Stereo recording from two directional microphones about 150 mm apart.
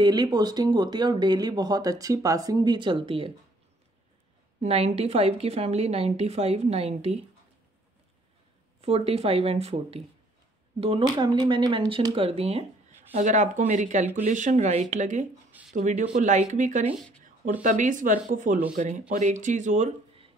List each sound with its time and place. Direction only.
0.0 s speech: 25° right (ahead or behind)
4.6 s a woman's voice: 45° right (ahead or behind)
8.8 s a woman's voice: 45° right (ahead or behind)
11.1 s speech: 30° right (ahead or behind)
13.1 s a woman's voice: 55° right (ahead or behind)